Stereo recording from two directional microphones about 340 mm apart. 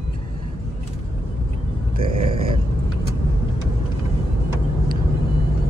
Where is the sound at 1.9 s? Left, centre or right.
Right.